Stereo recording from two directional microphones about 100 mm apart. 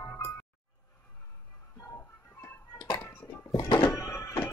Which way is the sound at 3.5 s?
50° left (ahead or behind).